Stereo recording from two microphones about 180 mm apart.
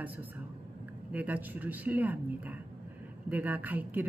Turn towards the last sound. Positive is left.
turn(degrees=-10)  # may be behind; listen again after turning